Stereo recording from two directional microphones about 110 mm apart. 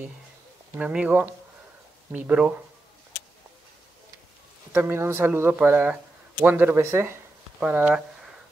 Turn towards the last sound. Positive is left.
turn(degrees=-15)  # may be behind; listen again after turning